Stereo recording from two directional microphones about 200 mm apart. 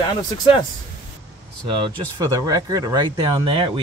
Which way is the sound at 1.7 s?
20° right (ahead or behind).